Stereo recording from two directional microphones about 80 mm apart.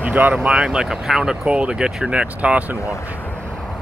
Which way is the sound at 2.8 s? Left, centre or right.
Left.